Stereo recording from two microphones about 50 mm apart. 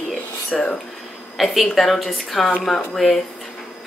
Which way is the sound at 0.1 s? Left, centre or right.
Centre.